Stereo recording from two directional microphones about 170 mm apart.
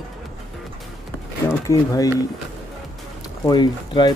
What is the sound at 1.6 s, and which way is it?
Speech, 20° left (ahead or behind).